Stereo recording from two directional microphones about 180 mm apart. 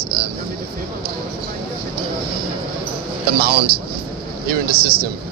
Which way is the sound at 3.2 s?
60° right (ahead or behind).